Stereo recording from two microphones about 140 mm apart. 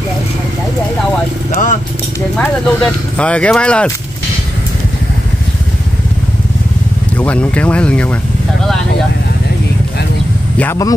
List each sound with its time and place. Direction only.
1.5 s speech: 65° left (ahead or behind)
2.3 s speech: 10° left (ahead or behind)
7.2 s speech: 10° left (ahead or behind)